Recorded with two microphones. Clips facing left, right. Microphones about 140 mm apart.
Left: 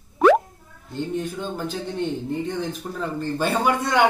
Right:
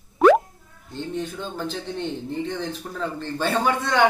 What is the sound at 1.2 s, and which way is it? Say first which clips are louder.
A man's voice: left 2 dB; 10° left (ahead or behind).